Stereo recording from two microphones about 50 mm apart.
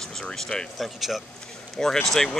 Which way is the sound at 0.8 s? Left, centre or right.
Centre.